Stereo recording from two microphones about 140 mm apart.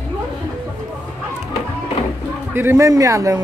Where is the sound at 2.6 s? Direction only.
20° right (ahead or behind).